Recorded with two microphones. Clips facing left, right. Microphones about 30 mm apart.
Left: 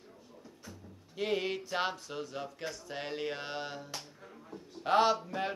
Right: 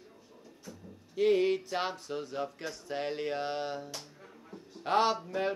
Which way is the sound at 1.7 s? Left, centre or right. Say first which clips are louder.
Even; centre.